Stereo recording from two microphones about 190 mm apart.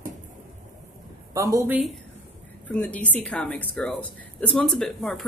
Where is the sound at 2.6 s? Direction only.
5° left (ahead or behind).